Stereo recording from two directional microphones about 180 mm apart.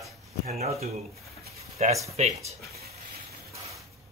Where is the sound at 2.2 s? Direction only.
40° right (ahead or behind).